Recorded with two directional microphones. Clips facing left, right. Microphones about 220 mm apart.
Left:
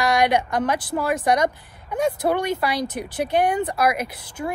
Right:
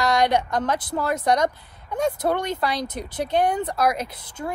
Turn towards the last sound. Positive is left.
turn(degrees=5)  # may be behind; listen again after turning